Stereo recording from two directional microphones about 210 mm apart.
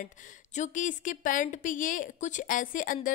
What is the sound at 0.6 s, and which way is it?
A woman's voice, 40° left (ahead or behind).